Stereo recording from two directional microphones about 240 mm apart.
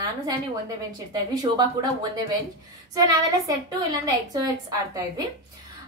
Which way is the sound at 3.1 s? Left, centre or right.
Centre.